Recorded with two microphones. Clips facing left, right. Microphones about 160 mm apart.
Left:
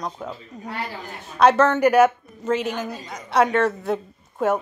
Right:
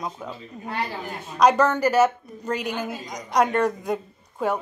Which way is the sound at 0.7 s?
20° right (ahead or behind).